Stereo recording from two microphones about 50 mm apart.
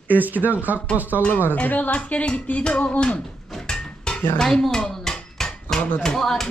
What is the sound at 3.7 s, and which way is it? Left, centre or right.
Dishes, centre.